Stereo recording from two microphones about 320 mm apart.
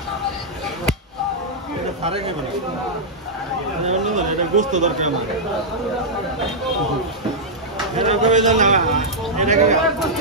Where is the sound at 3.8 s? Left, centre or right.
Right.